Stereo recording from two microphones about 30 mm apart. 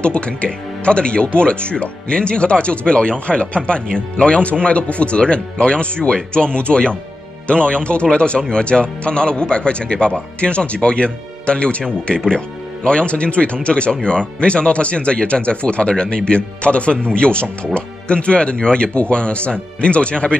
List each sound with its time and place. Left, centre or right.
0.0 s speech: left
8.6 s speech: left